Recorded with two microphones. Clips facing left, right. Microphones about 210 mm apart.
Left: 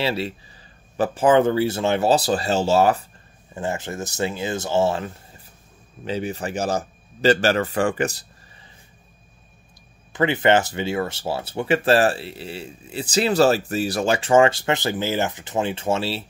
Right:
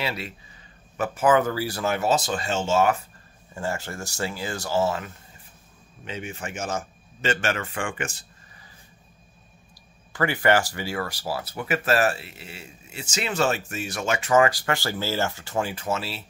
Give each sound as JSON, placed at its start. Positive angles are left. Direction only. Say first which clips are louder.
{"t": 0.0, "sound": "a man's voice", "louder": "left 7 dB", "side_deg": 30}
{"t": 3.5, "sound": "a man's voice", "louder": "left 3 dB", "side_deg": 20}
{"t": 10.1, "sound": "speech", "louder": "left 4 dB", "side_deg": 20}